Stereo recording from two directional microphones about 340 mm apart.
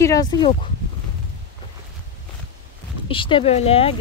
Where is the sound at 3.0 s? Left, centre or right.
Centre.